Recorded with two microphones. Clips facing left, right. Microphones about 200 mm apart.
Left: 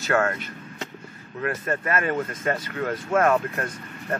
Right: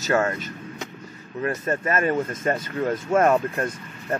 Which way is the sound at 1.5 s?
25° right (ahead or behind).